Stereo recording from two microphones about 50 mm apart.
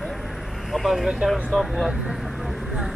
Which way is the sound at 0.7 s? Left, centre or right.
Centre.